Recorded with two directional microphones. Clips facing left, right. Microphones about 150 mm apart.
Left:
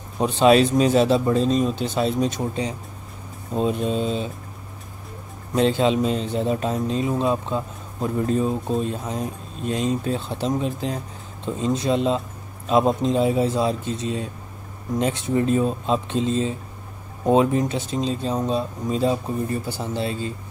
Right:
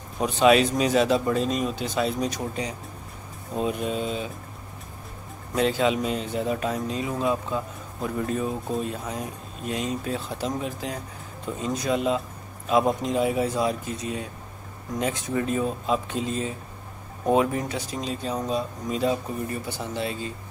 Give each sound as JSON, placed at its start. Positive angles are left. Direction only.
{"t": 0.2, "sound": "speech", "side_deg": 30}
{"t": 5.5, "sound": "speech", "side_deg": 30}